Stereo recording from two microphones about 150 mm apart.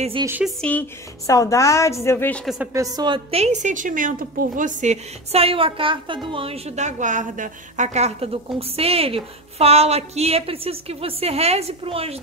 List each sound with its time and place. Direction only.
0.2 s speech: 25° right (ahead or behind)
0.6 s a woman's voice: 10° left (ahead or behind)
1.2 s a woman's voice: 20° left (ahead or behind)
3.0 s a woman's voice: 35° right (ahead or behind)